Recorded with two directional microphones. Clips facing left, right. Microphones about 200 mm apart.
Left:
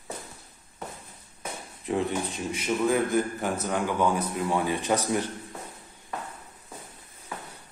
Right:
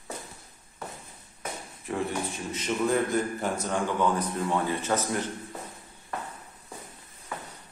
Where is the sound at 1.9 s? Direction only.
20° left (ahead or behind).